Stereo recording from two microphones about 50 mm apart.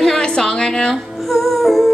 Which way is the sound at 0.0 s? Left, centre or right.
Centre.